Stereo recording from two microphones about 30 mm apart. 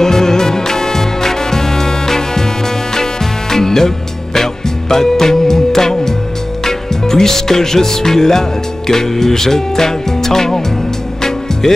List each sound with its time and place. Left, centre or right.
0.0 s music: centre
6.6 s speech: centre